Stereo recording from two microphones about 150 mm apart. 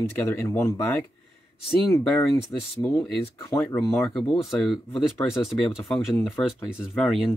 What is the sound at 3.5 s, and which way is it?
Speech, 20° left (ahead or behind).